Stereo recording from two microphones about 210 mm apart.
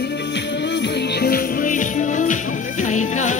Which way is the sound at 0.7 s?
55° left (ahead or behind).